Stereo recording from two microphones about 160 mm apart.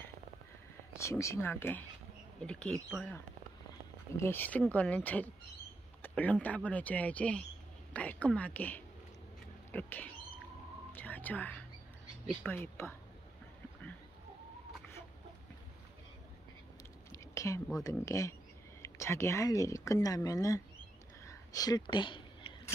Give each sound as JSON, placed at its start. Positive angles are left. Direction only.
{"t": 0.9, "sound": "speech", "side_deg": 20}
{"t": 4.2, "sound": "speech", "side_deg": 15}
{"t": 10.9, "sound": "whispering", "side_deg": 10}
{"t": 12.4, "sound": "speech", "side_deg": 15}
{"t": 17.1, "sound": "a sound", "side_deg": 20}
{"t": 17.8, "sound": "speech", "side_deg": 20}
{"t": 21.3, "sound": "whispering", "side_deg": 25}